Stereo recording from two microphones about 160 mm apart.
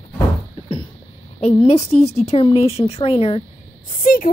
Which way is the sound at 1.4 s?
40° left (ahead or behind).